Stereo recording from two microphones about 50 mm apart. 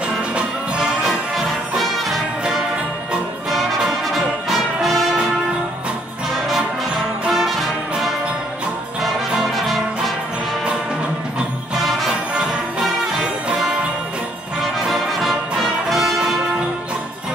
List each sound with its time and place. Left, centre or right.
0.3 s music: centre
1.8 s music: centre
3.4 s brass instrument: centre
7.2 s music: centre
9.0 s brass instrument: centre
11.7 s music: centre
12.1 s music: centre
14.8 s brass instrument: centre